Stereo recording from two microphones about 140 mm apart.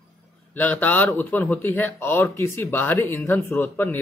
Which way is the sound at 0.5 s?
15° left (ahead or behind).